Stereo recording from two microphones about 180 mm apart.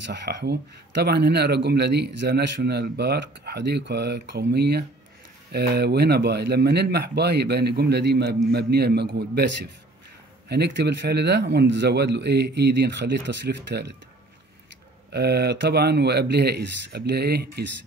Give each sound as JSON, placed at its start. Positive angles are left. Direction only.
{"t": 0.0, "sound": "a man's voice", "side_deg": -70}
{"t": 10.5, "sound": "a man's voice", "side_deg": -70}
{"t": 15.0, "sound": "speech", "side_deg": -65}